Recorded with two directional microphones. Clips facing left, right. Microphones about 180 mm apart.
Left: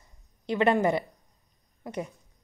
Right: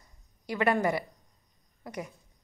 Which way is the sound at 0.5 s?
25° left (ahead or behind).